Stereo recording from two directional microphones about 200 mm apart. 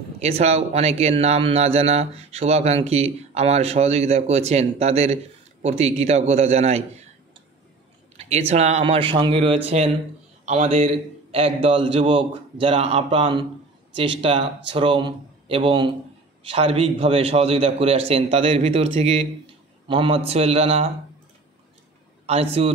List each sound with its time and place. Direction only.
0.2 s speech: 30° right (ahead or behind)
8.2 s a man's voice: 35° right (ahead or behind)
22.2 s a man's voice: 30° right (ahead or behind)